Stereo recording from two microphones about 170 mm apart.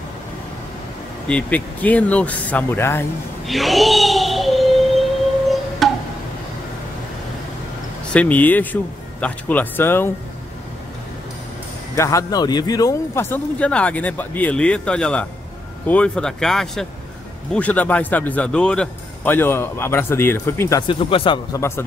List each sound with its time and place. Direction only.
1.2 s a man's voice: 10° left (ahead or behind)
3.4 s a sound: centre (ahead or behind)
5.8 s music: centre (ahead or behind)
8.1 s a man's voice: 10° left (ahead or behind)
11.9 s a man's voice: 15° left (ahead or behind)
20.8 s speech: 30° left (ahead or behind)
21.5 s a man's voice: 15° left (ahead or behind)